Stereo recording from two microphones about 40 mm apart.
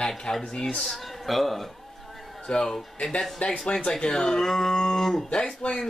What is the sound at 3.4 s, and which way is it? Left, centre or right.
Speech, left.